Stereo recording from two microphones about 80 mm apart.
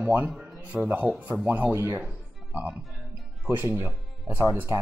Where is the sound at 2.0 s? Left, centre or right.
Centre.